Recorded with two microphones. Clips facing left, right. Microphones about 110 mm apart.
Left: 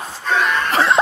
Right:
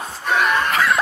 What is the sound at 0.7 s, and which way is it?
Cough, 30° left (ahead or behind).